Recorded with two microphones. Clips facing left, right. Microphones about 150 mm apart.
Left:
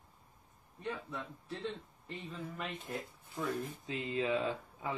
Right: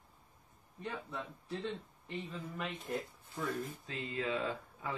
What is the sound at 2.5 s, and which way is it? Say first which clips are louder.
Speech: right 4 dB; centre (ahead or behind).